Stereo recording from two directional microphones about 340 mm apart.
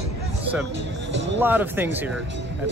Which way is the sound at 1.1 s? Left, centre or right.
Right.